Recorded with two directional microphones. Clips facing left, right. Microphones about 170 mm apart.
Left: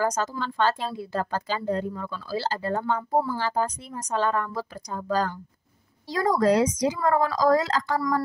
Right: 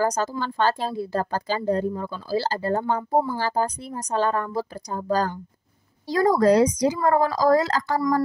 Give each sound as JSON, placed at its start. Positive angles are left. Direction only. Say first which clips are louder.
{"t": 0.0, "sound": "a woman's voice", "louder": "right 2 dB", "side_deg": -35}
{"t": 3.3, "sound": "a woman's voice", "louder": "right 2 dB", "side_deg": -35}